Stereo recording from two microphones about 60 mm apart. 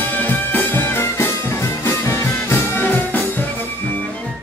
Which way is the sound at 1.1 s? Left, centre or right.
Left.